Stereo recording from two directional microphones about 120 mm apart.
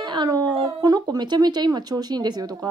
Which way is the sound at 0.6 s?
30° right (ahead or behind).